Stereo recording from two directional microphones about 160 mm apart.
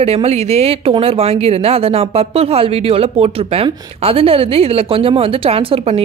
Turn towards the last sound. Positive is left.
turn(degrees=-35)  # may be behind; listen again after turning